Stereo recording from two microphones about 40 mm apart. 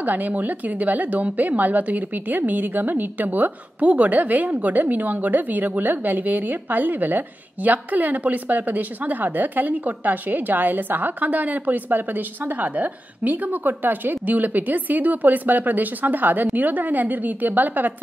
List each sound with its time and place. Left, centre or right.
0.0 s a woman's voice: right